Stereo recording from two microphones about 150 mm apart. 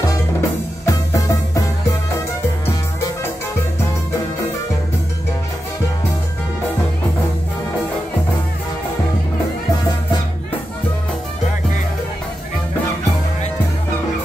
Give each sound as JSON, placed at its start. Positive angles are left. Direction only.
{"t": 0.1, "sound": "music", "side_deg": 20}